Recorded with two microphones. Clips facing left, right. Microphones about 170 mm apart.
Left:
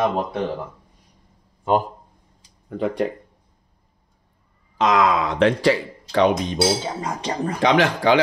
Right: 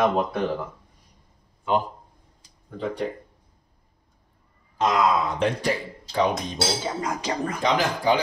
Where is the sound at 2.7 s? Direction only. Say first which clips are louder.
Left 6 dB; 75° left (ahead or behind).